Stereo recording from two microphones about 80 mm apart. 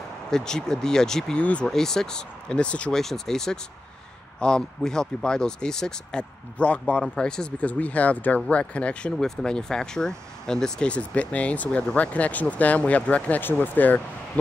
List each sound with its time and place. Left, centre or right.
0.3 s speech: centre
1.7 s speech: centre; by 14.4 s left